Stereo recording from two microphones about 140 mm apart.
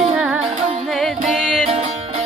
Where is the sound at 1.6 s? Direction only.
45° right (ahead or behind).